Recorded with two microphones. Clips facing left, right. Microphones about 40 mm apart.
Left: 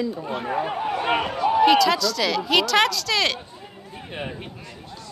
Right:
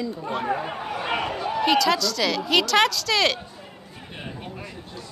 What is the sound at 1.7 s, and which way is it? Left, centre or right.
Speech, centre.